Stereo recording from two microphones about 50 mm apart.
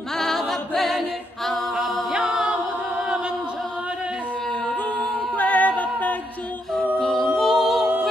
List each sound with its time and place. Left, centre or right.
0.2 s a capella: centre
2.1 s a capella: centre
5.4 s a capella: left
7.0 s a capella: centre
7.3 s music: centre